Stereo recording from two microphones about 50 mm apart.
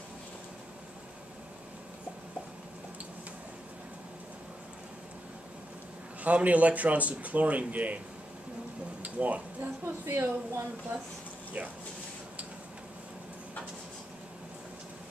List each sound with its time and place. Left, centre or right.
6.2 s speech: right
9.0 s a sound: right
9.6 s speech: right